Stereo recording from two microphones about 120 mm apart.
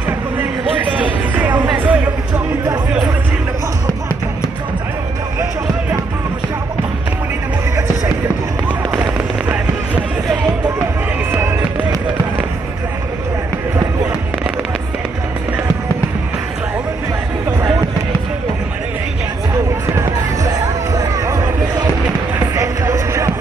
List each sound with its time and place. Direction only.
1.3 s music: 15° right (ahead or behind)
8.9 s fireworks: 15° right (ahead or behind)
20.0 s music: 25° right (ahead or behind)
22.6 s a sound: 25° right (ahead or behind)